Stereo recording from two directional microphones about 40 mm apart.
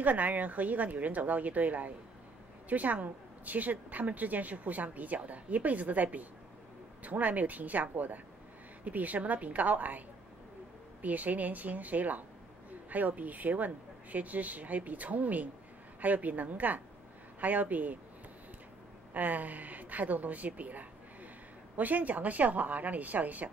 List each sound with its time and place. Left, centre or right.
0.0 s a woman's voice: right
19.1 s a woman's voice: right